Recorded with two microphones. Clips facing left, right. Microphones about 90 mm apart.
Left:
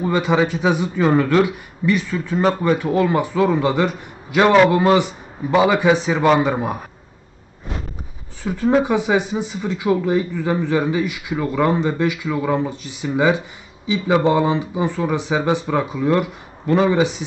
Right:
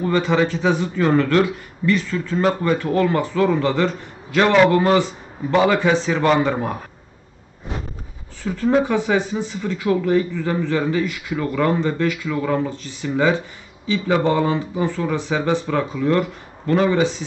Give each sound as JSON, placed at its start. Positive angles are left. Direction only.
{"t": 0.0, "sound": "a man's voice", "side_deg": 15}
{"t": 8.5, "sound": "a man's voice", "side_deg": 15}